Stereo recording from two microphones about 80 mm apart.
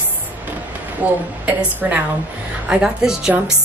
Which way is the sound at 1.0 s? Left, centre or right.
Right.